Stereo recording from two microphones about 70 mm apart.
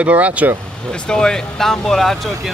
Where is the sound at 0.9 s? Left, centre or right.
Centre.